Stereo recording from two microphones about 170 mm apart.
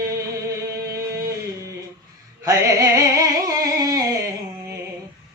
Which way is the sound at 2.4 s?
20° right (ahead or behind).